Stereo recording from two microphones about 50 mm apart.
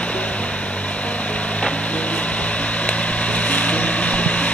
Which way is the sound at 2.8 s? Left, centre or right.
Left.